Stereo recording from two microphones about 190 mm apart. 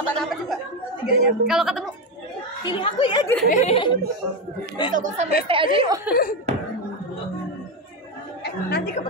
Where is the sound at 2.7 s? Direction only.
25° left (ahead or behind).